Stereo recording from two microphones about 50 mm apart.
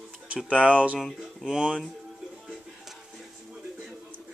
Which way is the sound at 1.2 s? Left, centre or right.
Centre.